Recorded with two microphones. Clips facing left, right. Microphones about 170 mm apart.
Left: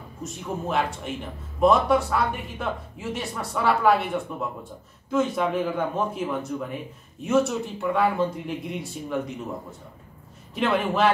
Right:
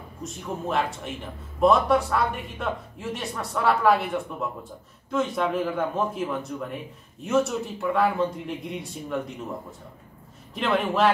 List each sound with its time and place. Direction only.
0.2 s speech: centre (ahead or behind)